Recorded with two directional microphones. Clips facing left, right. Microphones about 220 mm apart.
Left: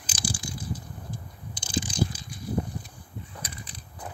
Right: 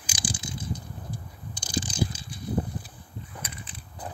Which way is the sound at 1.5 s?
25° left (ahead or behind).